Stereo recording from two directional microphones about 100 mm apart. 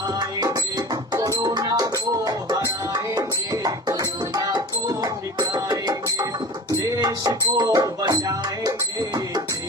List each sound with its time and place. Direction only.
0.2 s music: 45° right (ahead or behind)